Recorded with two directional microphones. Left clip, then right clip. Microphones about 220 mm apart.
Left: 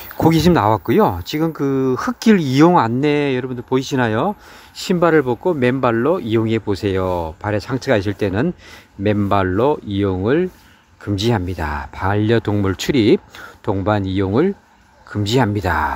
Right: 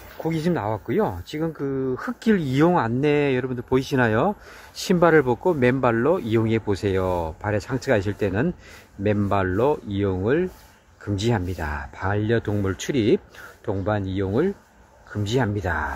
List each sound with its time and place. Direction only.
0.2 s speech: 30° left (ahead or behind)